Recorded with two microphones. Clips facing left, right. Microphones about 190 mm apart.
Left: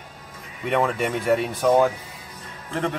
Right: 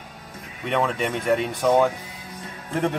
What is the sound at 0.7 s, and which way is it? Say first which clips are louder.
Speech: left 1 dB; 5° left (ahead or behind).